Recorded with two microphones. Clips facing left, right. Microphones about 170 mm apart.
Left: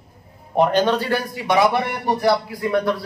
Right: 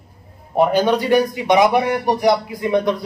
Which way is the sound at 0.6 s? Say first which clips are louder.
Right 2 dB; 10° right (ahead or behind).